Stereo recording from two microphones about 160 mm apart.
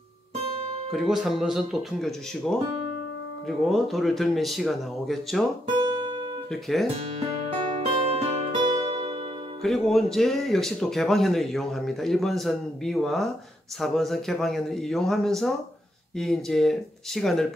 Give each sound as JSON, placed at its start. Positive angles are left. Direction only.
{"t": 0.9, "sound": "speech", "side_deg": 0}
{"t": 5.8, "sound": "guitar", "side_deg": -30}
{"t": 6.5, "sound": "speech", "side_deg": 0}
{"t": 7.7, "sound": "music", "side_deg": -40}
{"t": 9.6, "sound": "speech", "side_deg": 0}